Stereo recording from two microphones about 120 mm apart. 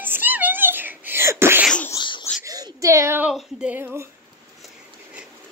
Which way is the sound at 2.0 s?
40° left (ahead or behind).